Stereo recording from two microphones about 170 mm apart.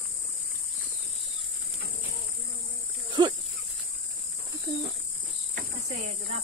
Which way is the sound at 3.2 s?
25° right (ahead or behind).